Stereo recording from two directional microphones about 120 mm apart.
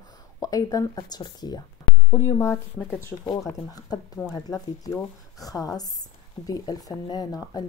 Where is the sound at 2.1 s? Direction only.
25° left (ahead or behind).